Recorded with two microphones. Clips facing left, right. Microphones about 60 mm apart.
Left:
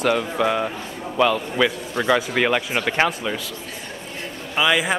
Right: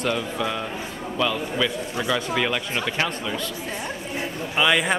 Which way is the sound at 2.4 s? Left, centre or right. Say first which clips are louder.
Left 4 dB; left.